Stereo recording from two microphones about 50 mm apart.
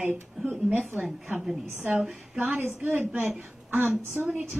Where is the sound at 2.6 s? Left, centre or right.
Right.